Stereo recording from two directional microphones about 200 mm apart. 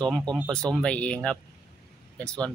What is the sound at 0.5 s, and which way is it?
Speech, 5° left (ahead or behind).